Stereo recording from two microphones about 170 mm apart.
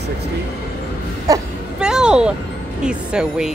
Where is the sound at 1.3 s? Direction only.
20° right (ahead or behind).